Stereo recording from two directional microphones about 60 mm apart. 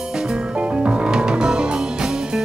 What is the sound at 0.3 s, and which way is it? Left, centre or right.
Music, centre.